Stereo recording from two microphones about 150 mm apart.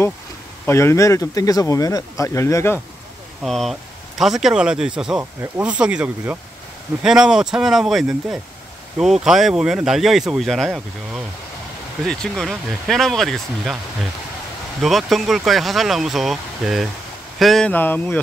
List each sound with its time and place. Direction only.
0.7 s speech: 15° left (ahead or behind)
3.4 s speech: centre (ahead or behind)
14.8 s speech: centre (ahead or behind)